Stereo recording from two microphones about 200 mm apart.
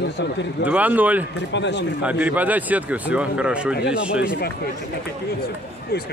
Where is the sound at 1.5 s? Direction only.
60° left (ahead or behind).